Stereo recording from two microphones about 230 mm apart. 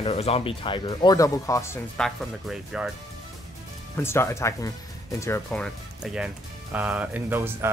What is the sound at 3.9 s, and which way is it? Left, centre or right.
Speech, centre.